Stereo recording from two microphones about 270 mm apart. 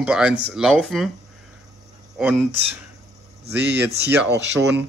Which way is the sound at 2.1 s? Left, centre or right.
Centre.